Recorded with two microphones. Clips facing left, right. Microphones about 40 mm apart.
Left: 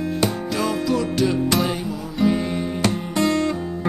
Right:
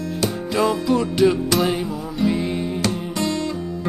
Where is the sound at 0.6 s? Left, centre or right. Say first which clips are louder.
Right 4 dB; centre.